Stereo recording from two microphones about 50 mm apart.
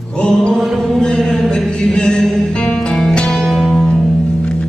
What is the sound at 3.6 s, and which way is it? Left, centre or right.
Music, centre.